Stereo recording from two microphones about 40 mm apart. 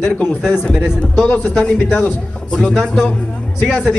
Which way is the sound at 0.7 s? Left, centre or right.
Centre.